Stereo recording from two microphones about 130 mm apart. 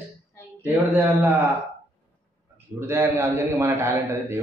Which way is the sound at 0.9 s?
15° right (ahead or behind).